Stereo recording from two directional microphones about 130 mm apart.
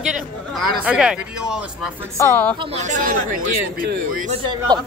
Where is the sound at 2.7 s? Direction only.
70° right (ahead or behind); by 3.5 s 90° right.